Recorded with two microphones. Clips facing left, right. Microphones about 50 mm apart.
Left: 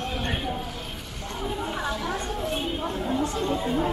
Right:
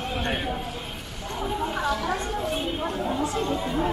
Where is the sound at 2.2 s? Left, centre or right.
Right.